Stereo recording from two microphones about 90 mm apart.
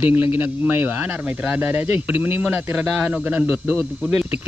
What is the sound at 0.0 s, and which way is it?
Speech, 25° right (ahead or behind).